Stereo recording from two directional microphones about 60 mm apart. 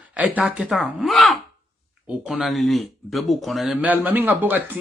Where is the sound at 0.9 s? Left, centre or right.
Centre.